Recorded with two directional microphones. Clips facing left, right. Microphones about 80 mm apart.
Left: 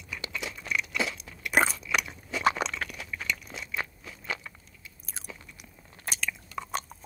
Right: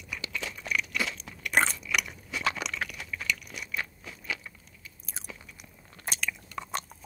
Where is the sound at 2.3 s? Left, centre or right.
Left.